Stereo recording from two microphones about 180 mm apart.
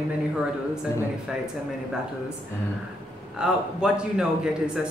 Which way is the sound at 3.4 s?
5° right (ahead or behind).